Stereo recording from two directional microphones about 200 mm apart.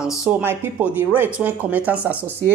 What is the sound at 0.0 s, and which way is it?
Speech, 5° right (ahead or behind).